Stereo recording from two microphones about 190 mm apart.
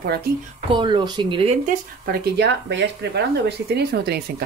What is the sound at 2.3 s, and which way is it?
Speech, 60° right (ahead or behind).